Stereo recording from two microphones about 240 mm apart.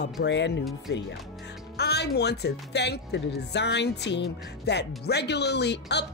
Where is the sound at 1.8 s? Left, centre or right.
Left.